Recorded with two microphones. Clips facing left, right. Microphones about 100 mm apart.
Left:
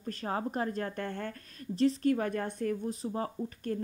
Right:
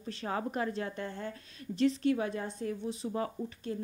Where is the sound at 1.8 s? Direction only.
40° left (ahead or behind).